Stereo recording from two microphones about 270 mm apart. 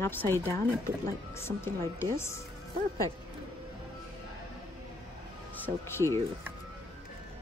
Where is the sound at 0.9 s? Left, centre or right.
Right.